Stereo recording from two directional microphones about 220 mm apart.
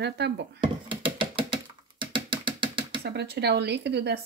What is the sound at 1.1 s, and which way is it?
Music, 20° right (ahead or behind).